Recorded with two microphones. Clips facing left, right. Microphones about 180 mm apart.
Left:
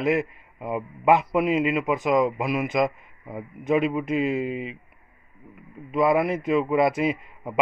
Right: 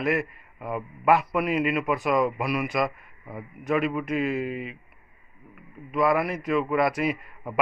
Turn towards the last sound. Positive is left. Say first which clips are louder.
# left 2 dB
turn(degrees=20)  # may be behind; listen again after turning